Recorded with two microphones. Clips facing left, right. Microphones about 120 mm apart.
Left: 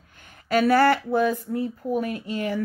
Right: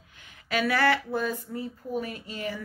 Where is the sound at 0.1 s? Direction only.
45° left (ahead or behind).